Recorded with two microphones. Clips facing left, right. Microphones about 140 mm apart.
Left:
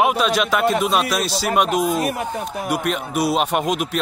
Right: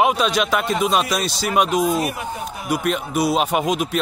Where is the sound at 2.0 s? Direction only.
45° left (ahead or behind).